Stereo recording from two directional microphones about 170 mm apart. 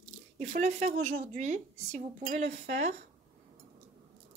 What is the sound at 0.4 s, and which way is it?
Speech, 45° right (ahead or behind).